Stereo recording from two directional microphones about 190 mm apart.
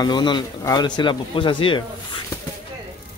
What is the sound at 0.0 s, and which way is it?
Speech, 20° left (ahead or behind).